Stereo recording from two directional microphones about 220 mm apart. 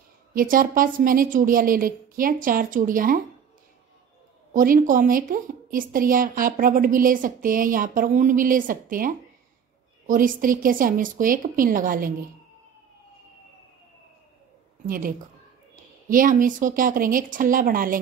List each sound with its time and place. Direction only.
0.3 s a woman's voice: 40° right (ahead or behind)
4.6 s a woman's voice: 40° right (ahead or behind)
14.9 s a woman's voice: 40° right (ahead or behind)